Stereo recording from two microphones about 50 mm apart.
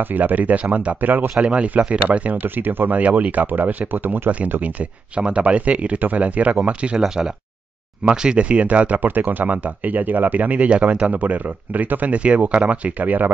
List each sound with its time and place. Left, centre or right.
0.0 s speech: right
2.4 s speech: right
3.1 s speech: right
4.5 s speech: right
7.0 s speech: centre; by 9.0 s right
9.0 s speech: right